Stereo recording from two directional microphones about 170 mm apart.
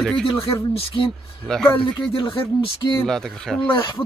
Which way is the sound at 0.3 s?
35° left (ahead or behind).